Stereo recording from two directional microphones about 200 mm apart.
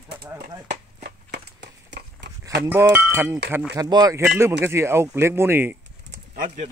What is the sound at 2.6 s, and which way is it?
Speech, 10° right (ahead or behind).